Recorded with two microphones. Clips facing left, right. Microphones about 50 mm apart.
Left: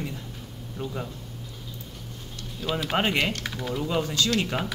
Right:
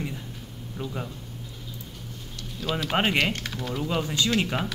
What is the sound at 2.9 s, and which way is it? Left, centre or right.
Speech, centre.